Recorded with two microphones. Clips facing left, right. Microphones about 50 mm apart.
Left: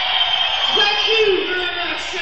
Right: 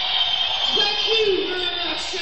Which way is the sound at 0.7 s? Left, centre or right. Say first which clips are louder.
Left 5 dB; left.